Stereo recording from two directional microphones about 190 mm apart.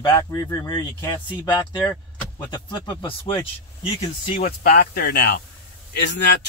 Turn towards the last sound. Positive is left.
turn(degrees=65)  # may be behind; listen again after turning